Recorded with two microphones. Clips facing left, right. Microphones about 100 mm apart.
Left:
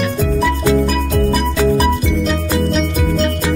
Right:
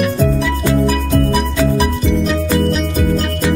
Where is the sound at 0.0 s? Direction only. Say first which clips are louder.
Right 1 dB; centre (ahead or behind).